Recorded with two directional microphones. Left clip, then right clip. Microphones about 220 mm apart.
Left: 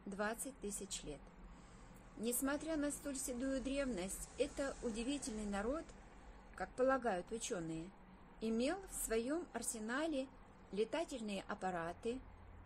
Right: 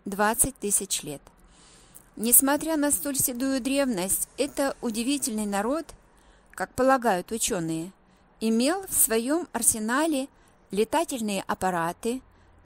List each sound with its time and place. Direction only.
0.1 s speech: 50° right (ahead or behind)
2.2 s speech: 45° right (ahead or behind)